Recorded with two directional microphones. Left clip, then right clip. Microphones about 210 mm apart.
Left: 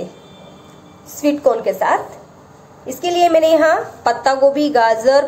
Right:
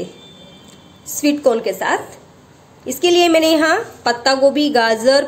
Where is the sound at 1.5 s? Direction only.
75° right (ahead or behind).